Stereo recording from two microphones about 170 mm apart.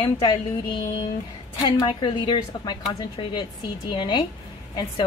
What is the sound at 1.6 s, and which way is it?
Speech, 25° left (ahead or behind).